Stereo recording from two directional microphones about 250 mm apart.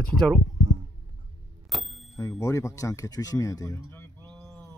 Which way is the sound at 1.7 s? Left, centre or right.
Centre.